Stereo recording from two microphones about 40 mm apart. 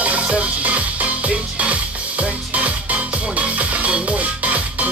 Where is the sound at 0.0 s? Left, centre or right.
Right.